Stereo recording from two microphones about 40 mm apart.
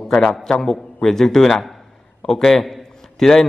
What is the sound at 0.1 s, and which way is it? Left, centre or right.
A man's voice, centre.